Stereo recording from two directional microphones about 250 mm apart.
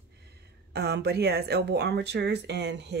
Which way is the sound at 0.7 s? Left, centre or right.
Right.